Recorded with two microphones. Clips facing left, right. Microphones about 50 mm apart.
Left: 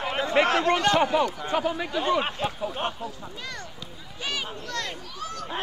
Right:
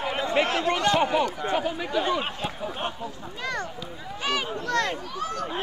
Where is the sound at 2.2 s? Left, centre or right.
Centre.